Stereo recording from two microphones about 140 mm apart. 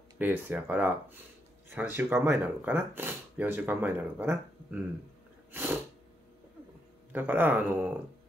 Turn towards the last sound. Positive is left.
turn(degrees=-15)  # may be behind; listen again after turning